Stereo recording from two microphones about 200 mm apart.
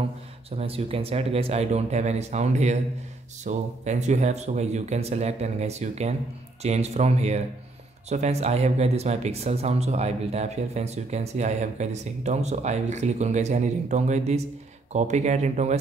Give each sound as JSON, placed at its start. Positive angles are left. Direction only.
{"t": 0.5, "sound": "speech", "side_deg": -30}